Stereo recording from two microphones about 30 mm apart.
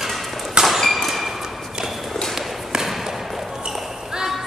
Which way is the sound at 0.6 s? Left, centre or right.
Right.